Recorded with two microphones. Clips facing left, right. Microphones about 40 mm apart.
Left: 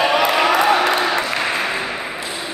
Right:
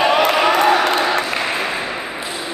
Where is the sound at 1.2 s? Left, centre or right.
Centre.